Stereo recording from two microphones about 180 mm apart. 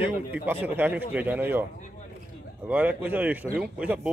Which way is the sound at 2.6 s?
10° right (ahead or behind).